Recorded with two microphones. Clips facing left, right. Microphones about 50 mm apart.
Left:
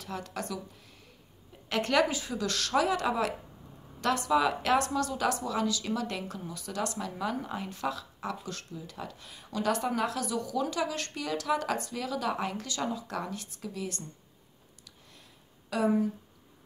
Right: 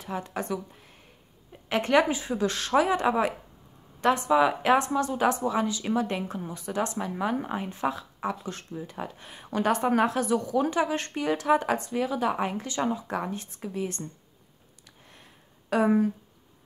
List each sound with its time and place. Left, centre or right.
0.0 s speech: right
14.9 s a sound: right
15.7 s speech: right